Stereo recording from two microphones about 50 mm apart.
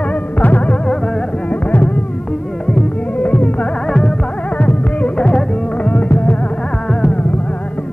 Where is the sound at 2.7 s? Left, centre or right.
Left.